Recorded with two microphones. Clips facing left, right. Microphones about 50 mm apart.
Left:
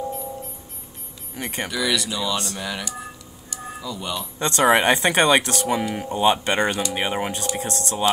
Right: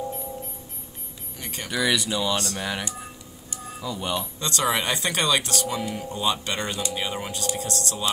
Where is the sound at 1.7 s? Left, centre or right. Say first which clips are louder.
Right 2 dB; right.